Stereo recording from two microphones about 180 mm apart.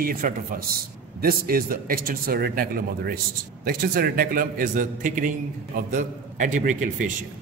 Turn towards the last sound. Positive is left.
turn(degrees=-45)  # may be behind; listen again after turning